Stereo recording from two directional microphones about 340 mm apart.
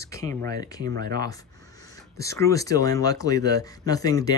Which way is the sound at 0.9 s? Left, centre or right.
Right.